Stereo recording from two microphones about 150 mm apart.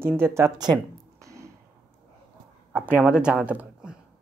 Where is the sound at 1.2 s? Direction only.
20° right (ahead or behind).